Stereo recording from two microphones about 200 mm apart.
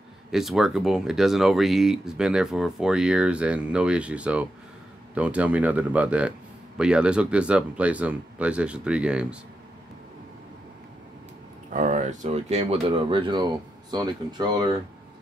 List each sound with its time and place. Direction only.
0.3 s speech: centre (ahead or behind)
11.7 s speech: 40° right (ahead or behind); by 14.8 s 20° right (ahead or behind)